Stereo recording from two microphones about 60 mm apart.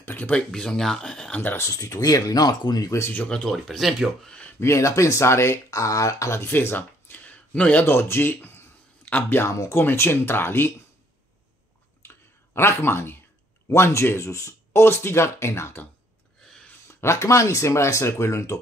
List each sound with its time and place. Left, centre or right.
0.0 s a sound: left
0.5 s speech: centre
1.3 s speech: left
1.6 s speech: left
3.3 s speech: centre
3.5 s speech: centre
4.6 s speech: left
5.7 s speech: left
6.3 s a sound: left
7.8 s a sound: left
9.5 s speech: left
12.5 s speech: left
16.8 s speech: left